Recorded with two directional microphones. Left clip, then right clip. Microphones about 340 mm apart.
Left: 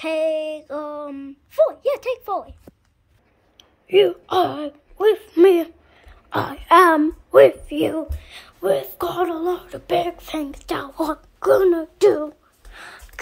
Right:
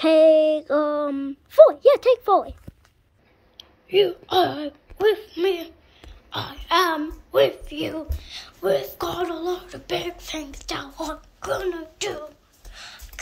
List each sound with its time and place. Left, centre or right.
0.0 s a sound: centre
3.8 s a woman's voice: centre
5.3 s a child's voice: centre
12.7 s whispering: centre